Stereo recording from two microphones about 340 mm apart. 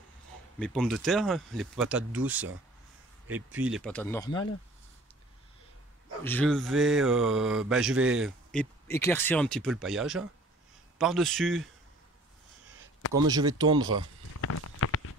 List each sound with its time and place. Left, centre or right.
0.6 s mantra: centre
3.5 s mantra: centre
6.2 s mantra: centre
13.1 s speech: centre
14.4 s a sound: left